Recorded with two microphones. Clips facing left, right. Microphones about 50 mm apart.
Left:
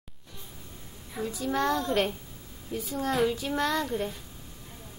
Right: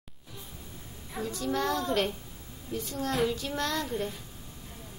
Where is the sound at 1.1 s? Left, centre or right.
Centre.